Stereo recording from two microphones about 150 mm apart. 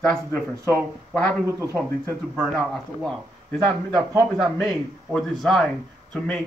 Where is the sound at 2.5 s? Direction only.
5° left (ahead or behind).